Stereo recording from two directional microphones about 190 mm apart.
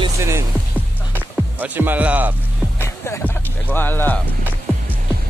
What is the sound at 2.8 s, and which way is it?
Music, 15° left (ahead or behind).